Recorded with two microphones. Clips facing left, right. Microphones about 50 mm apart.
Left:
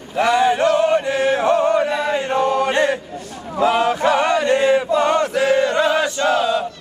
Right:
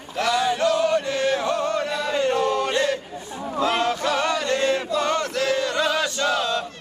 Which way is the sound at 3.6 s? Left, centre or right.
Centre.